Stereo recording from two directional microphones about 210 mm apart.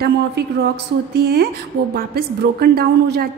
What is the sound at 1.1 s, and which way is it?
A woman's voice, 50° right (ahead or behind).